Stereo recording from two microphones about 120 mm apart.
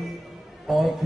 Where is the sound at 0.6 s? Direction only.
Centre (ahead or behind).